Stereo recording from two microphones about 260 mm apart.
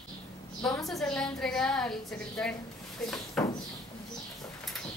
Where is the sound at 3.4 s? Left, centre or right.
Centre.